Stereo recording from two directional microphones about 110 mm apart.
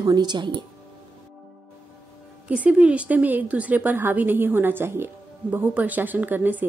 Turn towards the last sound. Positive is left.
turn(degrees=-20)  # may be behind; listen again after turning